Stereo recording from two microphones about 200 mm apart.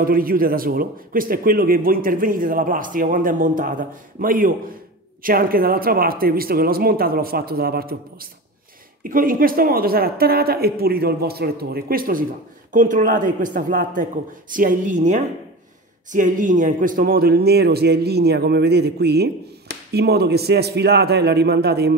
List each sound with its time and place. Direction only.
0.0 s a man's voice: 45° right (ahead or behind)